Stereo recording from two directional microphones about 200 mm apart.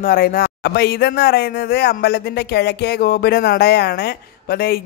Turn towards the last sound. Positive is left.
turn(degrees=50)  # may be behind; listen again after turning